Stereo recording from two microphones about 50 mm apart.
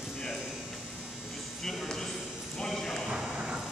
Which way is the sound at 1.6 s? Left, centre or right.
Centre.